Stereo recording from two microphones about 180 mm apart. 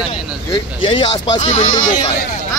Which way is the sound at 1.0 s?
40° left (ahead or behind).